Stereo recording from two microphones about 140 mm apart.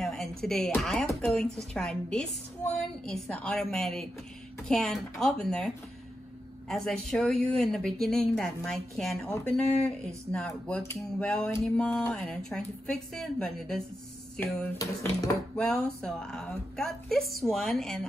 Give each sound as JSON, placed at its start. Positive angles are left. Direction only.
{"t": 0.0, "sound": "music", "side_deg": 5}
{"t": 0.4, "sound": "a woman's voice", "side_deg": 5}
{"t": 6.7, "sound": "a woman's voice", "side_deg": 5}
{"t": 14.4, "sound": "a woman's voice", "side_deg": 15}